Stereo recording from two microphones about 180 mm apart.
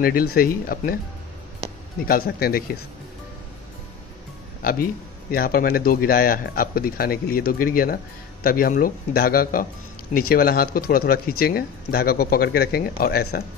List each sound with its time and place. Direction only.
0.0 s speech: 55° left (ahead or behind)
2.0 s speech: 55° left (ahead or behind)
4.6 s speech: 55° left (ahead or behind)